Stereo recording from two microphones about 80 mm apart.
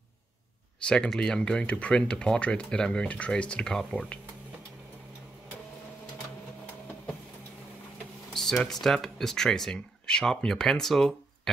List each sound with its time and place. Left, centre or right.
0.8 s speech: centre
8.3 s a sound: centre
8.8 s speech: centre